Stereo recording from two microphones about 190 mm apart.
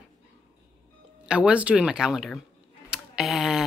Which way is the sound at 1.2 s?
5° right (ahead or behind).